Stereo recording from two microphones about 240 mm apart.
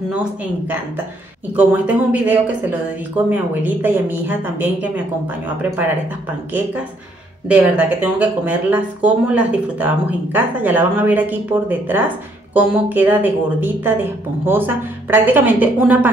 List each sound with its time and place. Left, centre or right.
1.6 s speech: centre
7.4 s speech: centre